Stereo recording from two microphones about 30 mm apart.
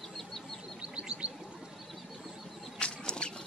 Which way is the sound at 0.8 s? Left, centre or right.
Right.